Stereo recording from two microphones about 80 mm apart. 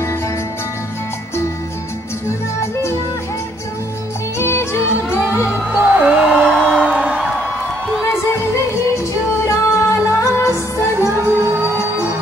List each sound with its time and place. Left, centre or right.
2.2 s music: left
4.4 s music: left
5.7 s music: centre
6.5 s music: centre
6.8 s music: centre
8.9 s music: left
11.0 s music: right